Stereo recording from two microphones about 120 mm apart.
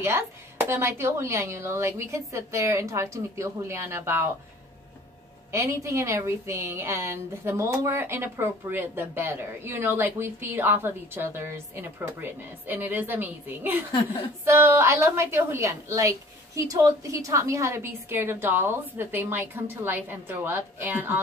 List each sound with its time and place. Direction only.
0.0 s a woman's voice: 20° right (ahead or behind)
5.5 s a woman's voice: 25° right (ahead or behind)